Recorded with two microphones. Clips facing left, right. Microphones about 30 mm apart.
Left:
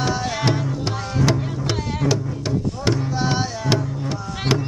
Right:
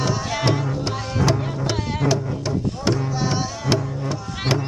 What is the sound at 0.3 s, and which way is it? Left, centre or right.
Music, centre.